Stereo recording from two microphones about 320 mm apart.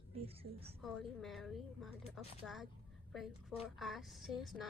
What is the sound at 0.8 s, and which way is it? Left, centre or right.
A woman's voice, centre.